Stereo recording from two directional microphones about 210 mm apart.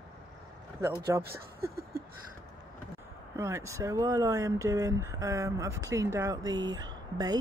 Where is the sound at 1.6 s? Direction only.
45° right (ahead or behind).